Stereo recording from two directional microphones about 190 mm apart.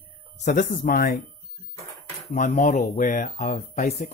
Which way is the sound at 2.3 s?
40° left (ahead or behind).